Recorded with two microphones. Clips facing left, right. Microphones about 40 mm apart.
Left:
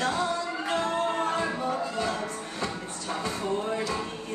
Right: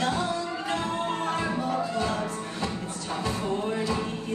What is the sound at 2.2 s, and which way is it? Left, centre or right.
Music, left.